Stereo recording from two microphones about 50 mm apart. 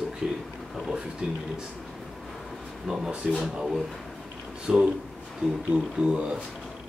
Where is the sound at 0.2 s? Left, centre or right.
Centre.